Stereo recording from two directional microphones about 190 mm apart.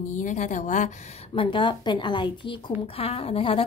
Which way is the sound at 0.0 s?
40° left (ahead or behind).